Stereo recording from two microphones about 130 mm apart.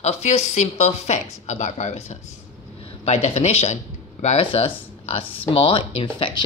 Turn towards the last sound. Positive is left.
turn(degrees=45)  # may be behind; listen again after turning